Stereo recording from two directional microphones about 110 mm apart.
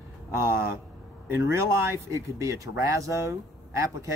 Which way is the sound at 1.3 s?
25° right (ahead or behind).